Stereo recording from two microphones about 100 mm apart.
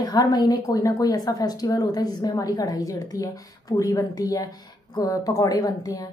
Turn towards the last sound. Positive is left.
turn(degrees=35)  # may be behind; listen again after turning